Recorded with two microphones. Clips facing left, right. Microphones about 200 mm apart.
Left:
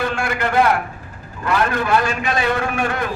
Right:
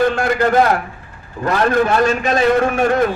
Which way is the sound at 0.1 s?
40° right (ahead or behind).